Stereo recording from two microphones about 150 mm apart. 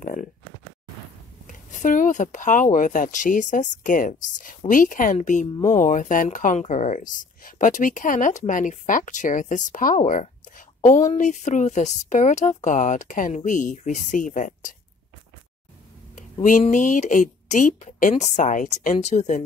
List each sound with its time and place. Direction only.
0.0 s speech: 65° left (ahead or behind)
1.5 s speech: 60° left (ahead or behind)
16.2 s a sound: 55° left (ahead or behind)
16.6 s speech: 60° left (ahead or behind)